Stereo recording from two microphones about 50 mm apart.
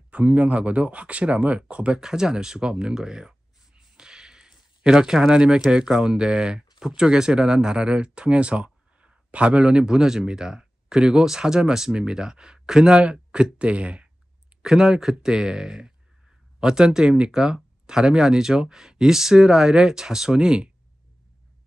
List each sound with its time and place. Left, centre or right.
0.1 s speech: right
2.0 s speech: centre
14.6 s speech: centre